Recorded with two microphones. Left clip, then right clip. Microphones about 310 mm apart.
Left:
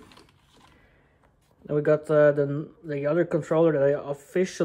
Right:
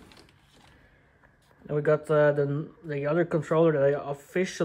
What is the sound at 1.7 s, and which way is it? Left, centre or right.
Speech, centre.